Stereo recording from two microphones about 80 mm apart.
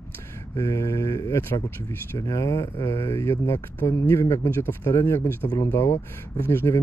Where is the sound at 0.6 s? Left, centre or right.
Left.